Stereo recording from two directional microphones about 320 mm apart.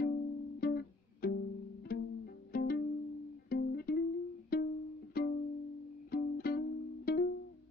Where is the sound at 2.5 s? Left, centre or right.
Left.